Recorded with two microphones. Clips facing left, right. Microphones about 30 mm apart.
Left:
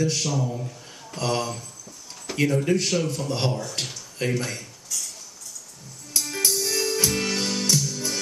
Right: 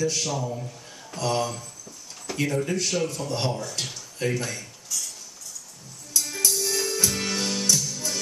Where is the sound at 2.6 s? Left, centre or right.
Left.